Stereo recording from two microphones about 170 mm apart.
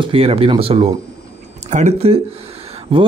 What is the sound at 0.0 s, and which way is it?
Speech, 35° right (ahead or behind).